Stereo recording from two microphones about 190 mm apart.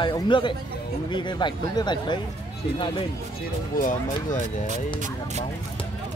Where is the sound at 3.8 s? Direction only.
45° left (ahead or behind).